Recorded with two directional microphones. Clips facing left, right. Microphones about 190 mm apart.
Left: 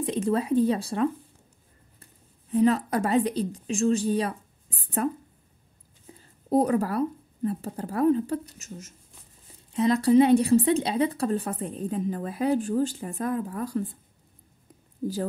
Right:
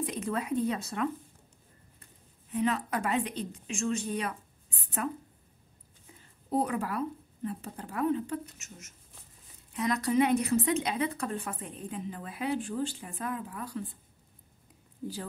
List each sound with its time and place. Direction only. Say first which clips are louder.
0.0 s speech: left 7 dB; 30° left (ahead or behind)
2.5 s speech: left 8 dB; 35° left (ahead or behind)
6.1 s speech: left 7 dB; 40° left (ahead or behind)
15.0 s speech: left 8 dB; 40° left (ahead or behind)